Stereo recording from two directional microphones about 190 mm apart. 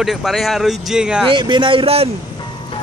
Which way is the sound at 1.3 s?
25° right (ahead or behind).